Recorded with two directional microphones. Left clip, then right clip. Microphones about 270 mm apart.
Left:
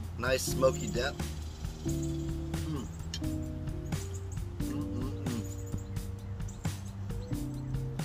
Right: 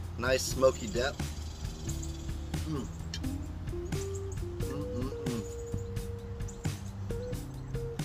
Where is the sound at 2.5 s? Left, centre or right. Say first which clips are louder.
Right 1 dB; centre.